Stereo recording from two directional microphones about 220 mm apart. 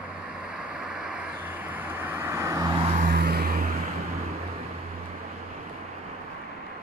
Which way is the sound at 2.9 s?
40° right (ahead or behind).